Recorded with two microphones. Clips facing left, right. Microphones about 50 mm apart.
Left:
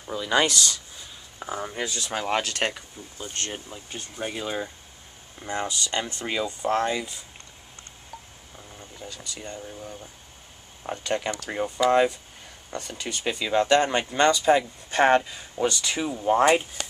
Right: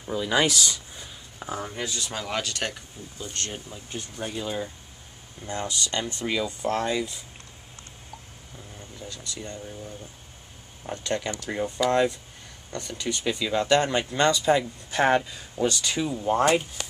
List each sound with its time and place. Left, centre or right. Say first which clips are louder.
0.0 s speech: even; centre
1.4 s speech: left 1 dB; centre
2.1 s speech: left 6 dB; left
3.5 s speech: even; centre
6.4 s speech: left 5 dB; centre
8.5 s speech: even; centre
10.8 s speech: left 1 dB; centre